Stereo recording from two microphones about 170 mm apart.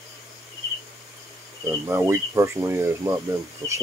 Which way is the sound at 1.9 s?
15° right (ahead or behind).